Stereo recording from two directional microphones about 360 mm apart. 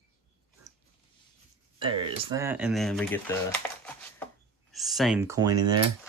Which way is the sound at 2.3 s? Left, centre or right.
Centre.